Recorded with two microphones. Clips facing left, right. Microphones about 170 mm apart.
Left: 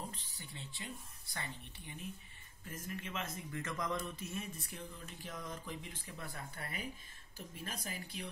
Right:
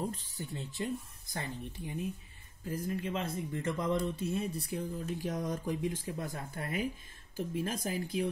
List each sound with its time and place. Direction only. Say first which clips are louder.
0.1 s speech: right 10 dB; 45° right (ahead or behind)